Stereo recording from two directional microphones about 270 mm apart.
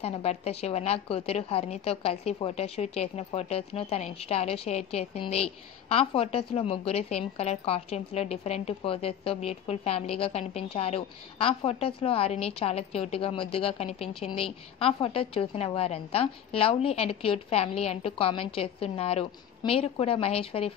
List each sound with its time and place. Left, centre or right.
0.0 s a woman's voice: left